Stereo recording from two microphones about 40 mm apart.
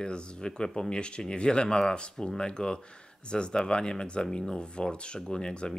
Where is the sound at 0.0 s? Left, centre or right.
Left.